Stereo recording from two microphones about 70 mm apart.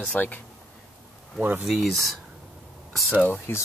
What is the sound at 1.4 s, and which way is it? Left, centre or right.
Speech, right.